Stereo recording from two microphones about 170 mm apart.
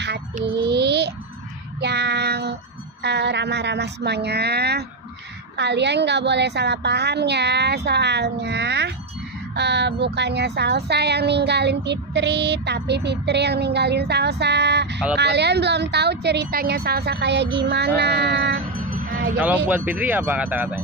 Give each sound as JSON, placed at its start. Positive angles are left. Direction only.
{"t": 0.5, "sound": "a sound", "side_deg": -80}
{"t": 1.8, "sound": "child singing", "side_deg": -80}
{"t": 3.0, "sound": "speech", "side_deg": -85}
{"t": 5.6, "sound": "speech", "side_deg": -90}
{"t": 19.4, "sound": "speech", "side_deg": -10}